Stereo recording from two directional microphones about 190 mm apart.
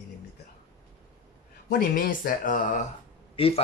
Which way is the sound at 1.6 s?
45° left (ahead or behind).